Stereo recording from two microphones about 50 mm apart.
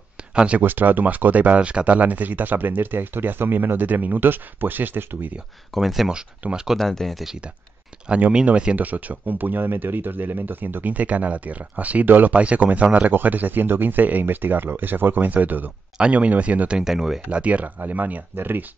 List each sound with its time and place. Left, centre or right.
0.3 s speech: centre
0.6 s speech: right
5.8 s speech: centre
6.5 s speech: centre
6.8 s speech: centre
8.5 s speech: right
8.7 s speech: right
16.8 s speech: centre
17.3 s speech: right
17.7 s speech: right